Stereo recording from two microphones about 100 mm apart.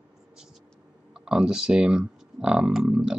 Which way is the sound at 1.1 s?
5° right (ahead or behind).